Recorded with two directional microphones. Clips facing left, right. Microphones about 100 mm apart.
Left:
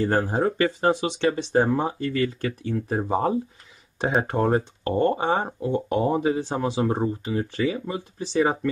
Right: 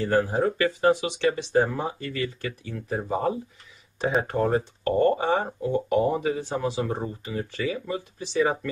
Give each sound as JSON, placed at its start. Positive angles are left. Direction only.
{"t": 0.1, "sound": "speech", "side_deg": 30}
{"t": 2.2, "sound": "speech", "side_deg": 45}
{"t": 3.0, "sound": "speech", "side_deg": 30}